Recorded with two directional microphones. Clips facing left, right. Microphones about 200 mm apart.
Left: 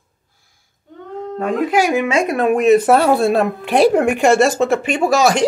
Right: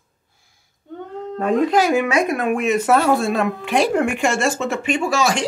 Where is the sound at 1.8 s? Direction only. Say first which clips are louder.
Left 1 dB; 20° left (ahead or behind).